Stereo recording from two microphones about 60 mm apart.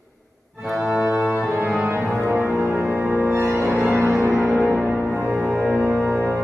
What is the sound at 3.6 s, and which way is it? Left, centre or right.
Music, right.